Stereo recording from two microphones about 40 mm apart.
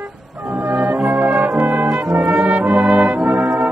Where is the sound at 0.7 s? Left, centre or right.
Right.